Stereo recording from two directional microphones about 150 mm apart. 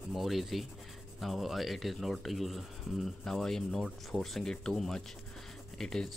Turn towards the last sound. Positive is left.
turn(degrees=5)  # may be behind; listen again after turning